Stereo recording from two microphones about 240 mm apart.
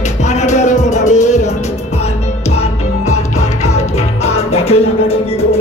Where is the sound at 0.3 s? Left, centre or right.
Left.